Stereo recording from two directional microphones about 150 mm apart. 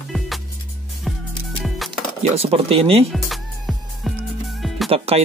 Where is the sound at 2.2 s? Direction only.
40° right (ahead or behind).